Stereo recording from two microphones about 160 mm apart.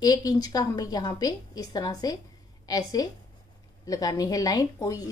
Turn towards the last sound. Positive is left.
turn(degrees=20)  # may be behind; listen again after turning